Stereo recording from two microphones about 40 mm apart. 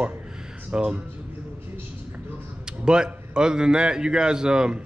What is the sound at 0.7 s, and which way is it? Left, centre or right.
Speech, right.